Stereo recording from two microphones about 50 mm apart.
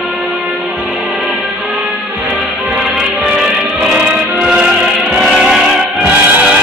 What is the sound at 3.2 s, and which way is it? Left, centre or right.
Music, centre.